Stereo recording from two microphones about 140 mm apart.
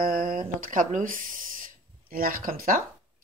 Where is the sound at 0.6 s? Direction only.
70° right (ahead or behind); by 2.8 s 85° right.